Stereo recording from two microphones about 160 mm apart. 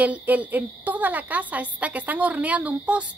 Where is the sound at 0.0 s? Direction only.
10° right (ahead or behind).